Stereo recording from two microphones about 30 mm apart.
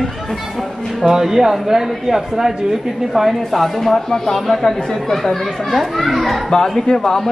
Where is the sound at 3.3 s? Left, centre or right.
Centre.